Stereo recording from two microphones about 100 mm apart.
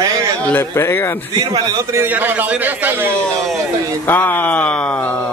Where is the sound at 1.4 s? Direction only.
40° right (ahead or behind).